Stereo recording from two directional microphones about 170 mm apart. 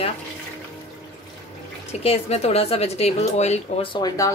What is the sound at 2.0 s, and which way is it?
Speech, 35° left (ahead or behind).